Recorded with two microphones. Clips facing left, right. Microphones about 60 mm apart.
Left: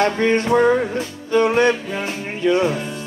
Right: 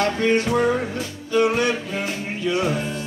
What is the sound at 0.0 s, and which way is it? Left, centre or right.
Music, left.